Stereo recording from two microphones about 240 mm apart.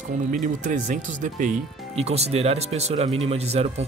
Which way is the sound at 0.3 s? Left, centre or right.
Right.